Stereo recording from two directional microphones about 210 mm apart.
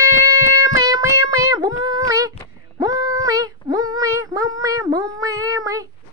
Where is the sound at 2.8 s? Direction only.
20° right (ahead or behind).